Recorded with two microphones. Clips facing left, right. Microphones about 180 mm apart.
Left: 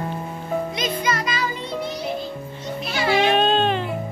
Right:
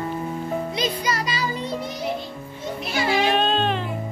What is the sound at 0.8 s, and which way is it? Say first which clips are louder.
Music: left 1 dB; 35° right (ahead or behind).